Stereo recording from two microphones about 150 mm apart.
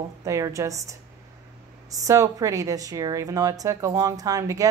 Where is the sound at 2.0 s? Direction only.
20° right (ahead or behind).